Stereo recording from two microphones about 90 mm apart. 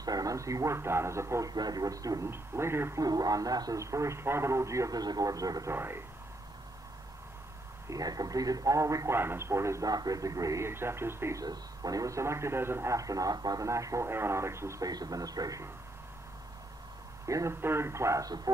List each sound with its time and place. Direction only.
0.0 s a man's voice: 45° right (ahead or behind)
1.5 s a man's voice: 45° right (ahead or behind)
2.3 s speech: 30° right (ahead or behind)
3.0 s a man's voice: 45° right (ahead or behind)
5.7 s speech: 25° right (ahead or behind)
7.9 s a man's voice: 45° right (ahead or behind)
11.4 s a man's voice: 45° right (ahead or behind)
14.9 s a man's voice: 45° right (ahead or behind)
17.3 s a man's voice: 35° right (ahead or behind)